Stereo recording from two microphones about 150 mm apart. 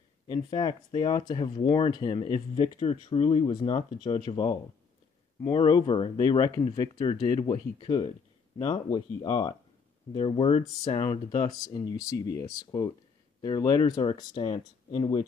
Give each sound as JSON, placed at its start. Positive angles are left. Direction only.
{"t": 0.3, "sound": "speech", "side_deg": 30}
{"t": 5.6, "sound": "speech", "side_deg": 30}
{"t": 14.4, "sound": "speech", "side_deg": 50}